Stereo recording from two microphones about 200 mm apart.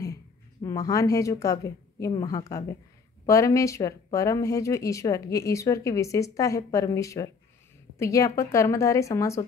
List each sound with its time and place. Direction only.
0.0 s speech: 15° left (ahead or behind)